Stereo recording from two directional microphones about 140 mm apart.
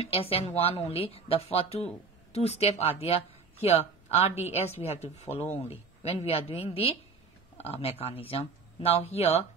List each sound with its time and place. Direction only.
0.0 s speech: 45° left (ahead or behind)
5.3 s speech: 45° left (ahead or behind)